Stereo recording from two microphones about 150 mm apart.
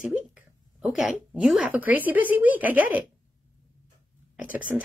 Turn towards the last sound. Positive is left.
turn(degrees=-10)  # may be behind; listen again after turning